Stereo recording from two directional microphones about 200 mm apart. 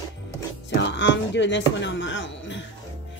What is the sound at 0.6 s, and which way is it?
A woman's voice, 60° left (ahead or behind).